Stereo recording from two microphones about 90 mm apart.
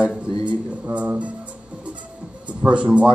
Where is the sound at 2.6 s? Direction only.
10° right (ahead or behind).